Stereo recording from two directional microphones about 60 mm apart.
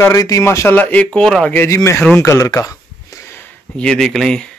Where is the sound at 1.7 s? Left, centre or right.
Left.